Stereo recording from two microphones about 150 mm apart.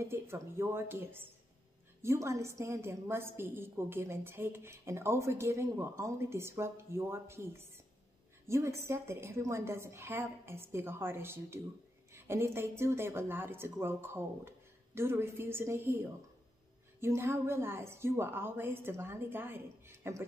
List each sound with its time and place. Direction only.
0.0 s a woman's voice: 15° right (ahead or behind)